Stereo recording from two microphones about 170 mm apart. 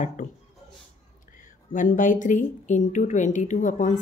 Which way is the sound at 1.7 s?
50° left (ahead or behind).